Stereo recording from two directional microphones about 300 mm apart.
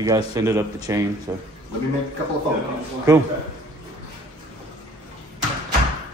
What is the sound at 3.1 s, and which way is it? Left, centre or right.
Speech, centre.